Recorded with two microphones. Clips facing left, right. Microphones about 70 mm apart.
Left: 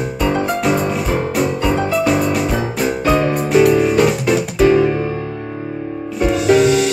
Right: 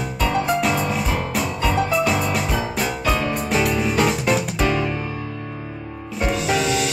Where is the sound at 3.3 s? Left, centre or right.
Centre.